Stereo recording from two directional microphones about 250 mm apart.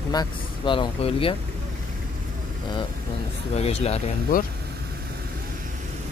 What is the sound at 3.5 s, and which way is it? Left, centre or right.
Speech, left.